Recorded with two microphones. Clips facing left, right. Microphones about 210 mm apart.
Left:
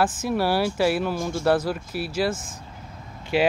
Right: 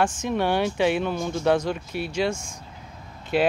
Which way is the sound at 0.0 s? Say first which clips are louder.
Left 1 dB; 5° left (ahead or behind).